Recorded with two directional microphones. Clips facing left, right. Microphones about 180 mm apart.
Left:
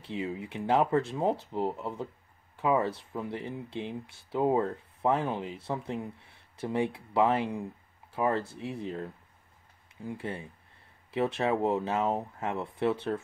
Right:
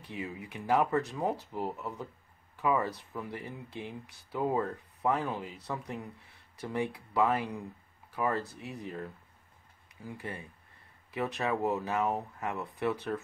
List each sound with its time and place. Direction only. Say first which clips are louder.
0.0 s speech: left 5 dB; 25° left (ahead or behind)